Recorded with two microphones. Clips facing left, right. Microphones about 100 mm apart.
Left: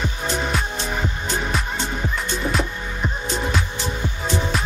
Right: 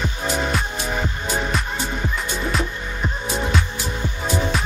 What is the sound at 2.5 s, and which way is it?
Music, centre (ahead or behind).